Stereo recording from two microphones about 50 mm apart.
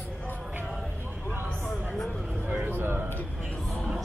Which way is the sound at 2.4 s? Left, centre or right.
Right.